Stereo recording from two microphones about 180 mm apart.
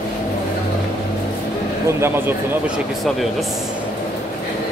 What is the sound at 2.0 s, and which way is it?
Speech, 10° right (ahead or behind).